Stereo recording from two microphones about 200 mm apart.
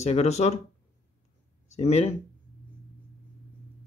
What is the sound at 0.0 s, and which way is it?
Speech, 35° left (ahead or behind).